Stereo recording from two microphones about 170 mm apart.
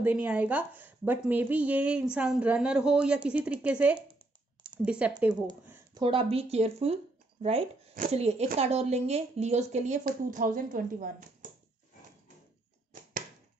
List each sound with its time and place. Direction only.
0.0 s a woman's voice: 10° right (ahead or behind)
5.9 s speech: 30° right (ahead or behind)
8.1 s speech: 40° right (ahead or behind)